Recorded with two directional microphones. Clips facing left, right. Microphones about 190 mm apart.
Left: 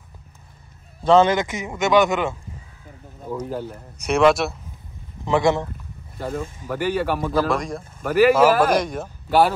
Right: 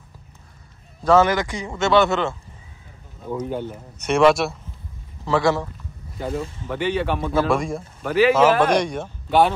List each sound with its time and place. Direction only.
1.0 s speech: 25° left (ahead or behind)
3.3 s speech: centre (ahead or behind)
5.2 s speech: 20° left (ahead or behind)
6.2 s speech: centre (ahead or behind)